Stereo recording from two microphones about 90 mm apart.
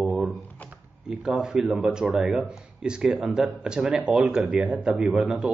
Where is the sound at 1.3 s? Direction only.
5° right (ahead or behind).